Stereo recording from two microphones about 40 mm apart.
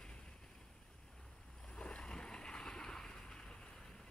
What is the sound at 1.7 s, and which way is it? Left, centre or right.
Boat, left.